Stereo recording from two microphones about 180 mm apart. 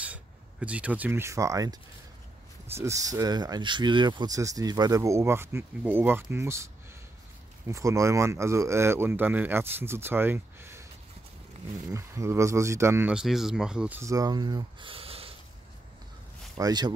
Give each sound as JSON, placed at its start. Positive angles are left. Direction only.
{"t": 0.0, "sound": "speech", "side_deg": -5}
{"t": 11.9, "sound": "speech", "side_deg": -15}
{"t": 16.5, "sound": "speech", "side_deg": -20}